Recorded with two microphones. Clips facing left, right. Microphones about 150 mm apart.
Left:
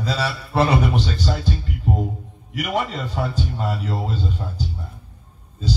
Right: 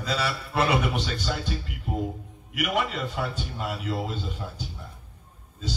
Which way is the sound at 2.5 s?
35° left (ahead or behind).